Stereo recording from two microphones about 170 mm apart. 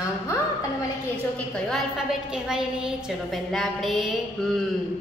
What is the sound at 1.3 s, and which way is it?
A woman's voice, 5° left (ahead or behind).